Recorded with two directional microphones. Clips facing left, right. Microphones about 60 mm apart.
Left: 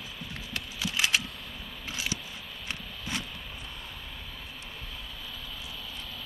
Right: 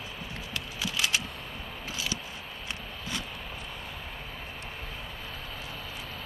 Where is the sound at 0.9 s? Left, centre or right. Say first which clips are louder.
Left 2 dB; left.